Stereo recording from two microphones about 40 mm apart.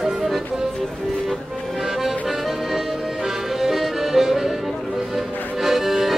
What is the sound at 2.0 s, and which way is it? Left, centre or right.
Accordion, centre.